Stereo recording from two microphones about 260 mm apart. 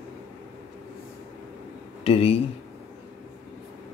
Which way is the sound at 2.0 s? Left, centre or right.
Left.